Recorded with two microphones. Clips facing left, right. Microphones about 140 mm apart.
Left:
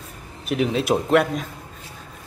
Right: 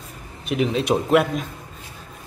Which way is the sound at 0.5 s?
Centre (ahead or behind).